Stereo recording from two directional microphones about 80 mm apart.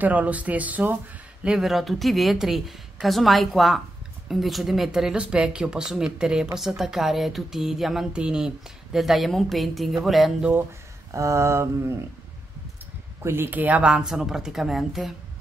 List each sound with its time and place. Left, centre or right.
0.0 s speech: centre
1.7 s a sound: centre
4.3 s speech: centre
6.8 s a sound: centre
11.1 s mantra: right
13.2 s speech: right; by 15.1 s centre